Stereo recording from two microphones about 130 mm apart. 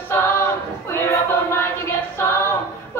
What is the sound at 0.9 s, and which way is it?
Music, 20° left (ahead or behind).